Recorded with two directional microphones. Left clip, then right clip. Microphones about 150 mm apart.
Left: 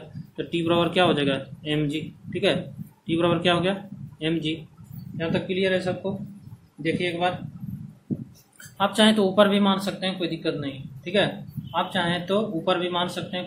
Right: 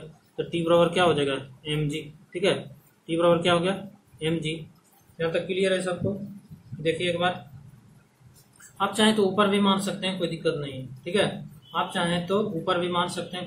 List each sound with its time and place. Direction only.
0.5 s a man's voice: 30° left (ahead or behind); by 5.8 s 45° left (ahead or behind)
6.8 s a man's voice: 40° left (ahead or behind)
8.7 s speech: 60° left (ahead or behind)